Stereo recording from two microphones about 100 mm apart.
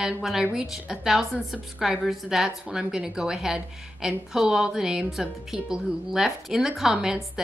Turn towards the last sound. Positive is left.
turn(degrees=-5)  # may be behind; listen again after turning